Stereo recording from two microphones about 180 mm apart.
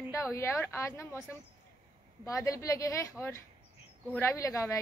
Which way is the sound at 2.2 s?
15° left (ahead or behind).